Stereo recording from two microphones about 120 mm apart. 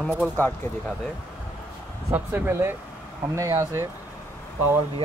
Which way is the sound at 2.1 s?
15° right (ahead or behind).